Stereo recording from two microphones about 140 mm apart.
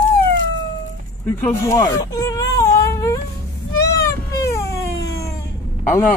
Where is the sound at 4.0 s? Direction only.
25° left (ahead or behind).